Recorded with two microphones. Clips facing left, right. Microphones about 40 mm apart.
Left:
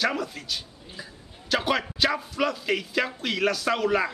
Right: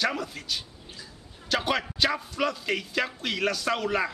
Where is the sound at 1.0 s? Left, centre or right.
Left.